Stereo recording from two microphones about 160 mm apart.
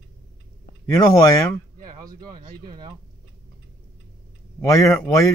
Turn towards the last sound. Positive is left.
turn(degrees=15)  # may be behind; listen again after turning